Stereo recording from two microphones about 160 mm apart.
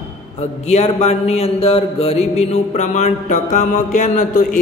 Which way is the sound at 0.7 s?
45° left (ahead or behind).